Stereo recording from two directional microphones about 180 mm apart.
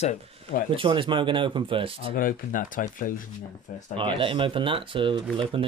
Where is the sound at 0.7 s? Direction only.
30° right (ahead or behind).